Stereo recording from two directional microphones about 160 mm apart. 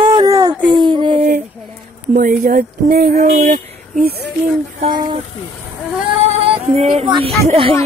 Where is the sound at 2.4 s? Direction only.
70° right (ahead or behind).